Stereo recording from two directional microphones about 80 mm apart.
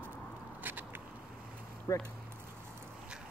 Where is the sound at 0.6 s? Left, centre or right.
Right.